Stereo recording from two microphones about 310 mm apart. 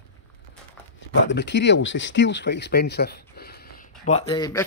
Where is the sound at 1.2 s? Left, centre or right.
Left.